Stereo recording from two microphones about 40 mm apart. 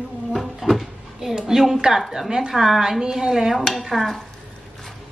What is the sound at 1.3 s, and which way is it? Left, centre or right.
Dishes, centre.